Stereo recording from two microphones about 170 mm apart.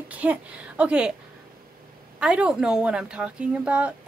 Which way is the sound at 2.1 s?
5° right (ahead or behind).